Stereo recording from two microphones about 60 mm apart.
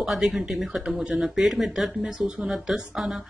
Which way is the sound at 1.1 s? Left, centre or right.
Centre.